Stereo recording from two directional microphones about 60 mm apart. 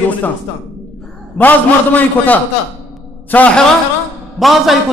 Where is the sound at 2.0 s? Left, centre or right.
Left.